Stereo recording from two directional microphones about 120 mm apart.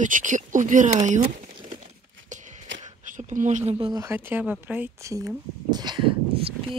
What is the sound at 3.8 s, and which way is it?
Speech, 35° right (ahead or behind).